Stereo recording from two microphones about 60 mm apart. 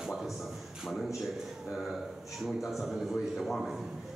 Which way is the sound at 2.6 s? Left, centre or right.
Centre.